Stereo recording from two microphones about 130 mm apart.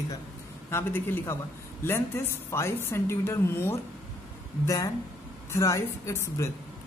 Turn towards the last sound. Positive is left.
turn(degrees=20)  # may be behind; listen again after turning